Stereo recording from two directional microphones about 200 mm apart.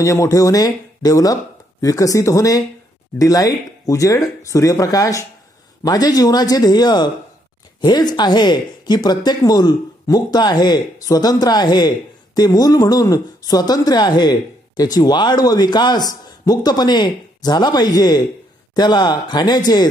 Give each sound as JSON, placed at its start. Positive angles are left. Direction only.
{"t": 0.0, "sound": "a woman's voice", "side_deg": 15}